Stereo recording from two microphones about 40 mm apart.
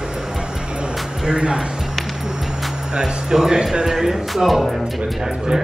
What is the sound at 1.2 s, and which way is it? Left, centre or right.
Speech, centre.